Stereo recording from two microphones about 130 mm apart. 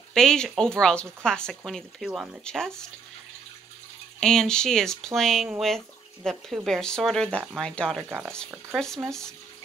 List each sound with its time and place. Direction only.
0.1 s a woman's voice: 5° left (ahead or behind)
2.4 s speech: 5° left (ahead or behind)
4.2 s speech: 5° left (ahead or behind)
8.0 s speech: 15° right (ahead or behind)
8.7 s speech: 5° left (ahead or behind)